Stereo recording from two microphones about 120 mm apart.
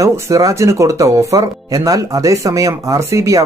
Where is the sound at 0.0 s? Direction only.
25° right (ahead or behind).